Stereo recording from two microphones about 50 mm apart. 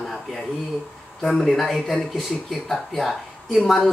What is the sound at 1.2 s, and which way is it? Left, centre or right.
Speech, centre.